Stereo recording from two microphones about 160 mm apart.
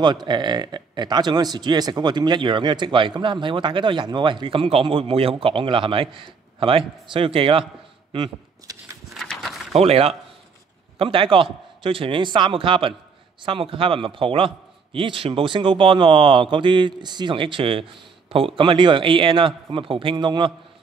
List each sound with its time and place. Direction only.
0.0 s speech: 30° right (ahead or behind)
9.1 s a sound: centre (ahead or behind)
9.8 s speech: 40° right (ahead or behind)